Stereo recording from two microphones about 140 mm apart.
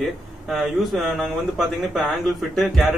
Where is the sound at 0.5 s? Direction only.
Centre (ahead or behind).